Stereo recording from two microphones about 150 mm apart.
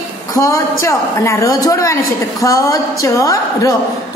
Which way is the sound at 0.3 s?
20° left (ahead or behind).